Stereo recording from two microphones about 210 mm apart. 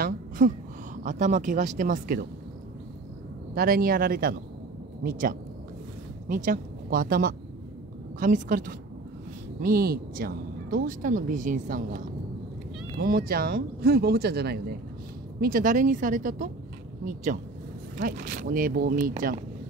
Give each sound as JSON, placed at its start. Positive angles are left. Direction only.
{"t": 0.4, "sound": "speech", "side_deg": -40}
{"t": 3.5, "sound": "speech", "side_deg": -45}
{"t": 13.0, "sound": "speech", "side_deg": -45}